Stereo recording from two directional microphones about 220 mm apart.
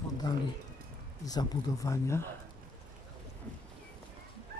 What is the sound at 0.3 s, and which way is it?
Speech, 20° left (ahead or behind).